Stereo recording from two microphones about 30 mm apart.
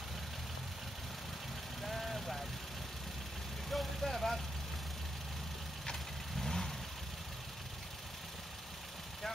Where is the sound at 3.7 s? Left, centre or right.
Centre.